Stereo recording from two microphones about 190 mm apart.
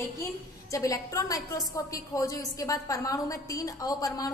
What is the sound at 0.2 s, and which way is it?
A woman's voice, 15° left (ahead or behind).